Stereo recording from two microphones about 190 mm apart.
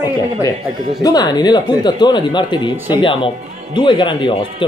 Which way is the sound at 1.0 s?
20° left (ahead or behind).